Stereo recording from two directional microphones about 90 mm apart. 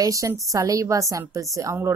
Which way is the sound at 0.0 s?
40° right (ahead or behind).